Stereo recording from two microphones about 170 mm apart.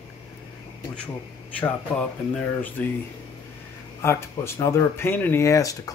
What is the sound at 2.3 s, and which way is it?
Speech, 10° left (ahead or behind).